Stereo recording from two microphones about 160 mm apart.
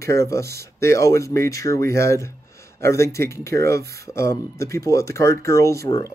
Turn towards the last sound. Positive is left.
turn(degrees=20)  # may be behind; listen again after turning